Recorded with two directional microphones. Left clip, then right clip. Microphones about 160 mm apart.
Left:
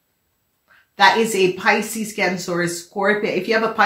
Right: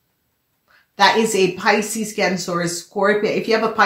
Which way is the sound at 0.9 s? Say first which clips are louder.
Even; 30° right (ahead or behind).